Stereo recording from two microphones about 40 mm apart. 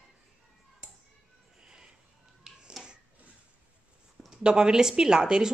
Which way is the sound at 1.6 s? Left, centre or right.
Right.